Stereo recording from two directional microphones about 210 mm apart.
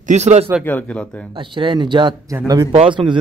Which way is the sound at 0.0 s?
35° right (ahead or behind).